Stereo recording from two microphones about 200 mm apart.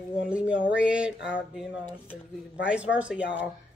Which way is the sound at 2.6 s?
5° right (ahead or behind).